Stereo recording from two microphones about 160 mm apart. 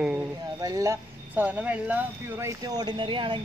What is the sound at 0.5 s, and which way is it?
Speech, 20° right (ahead or behind).